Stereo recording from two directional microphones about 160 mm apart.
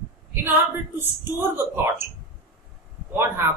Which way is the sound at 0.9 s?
15° right (ahead or behind).